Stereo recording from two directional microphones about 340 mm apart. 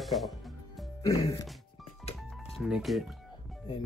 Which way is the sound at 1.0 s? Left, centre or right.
Centre.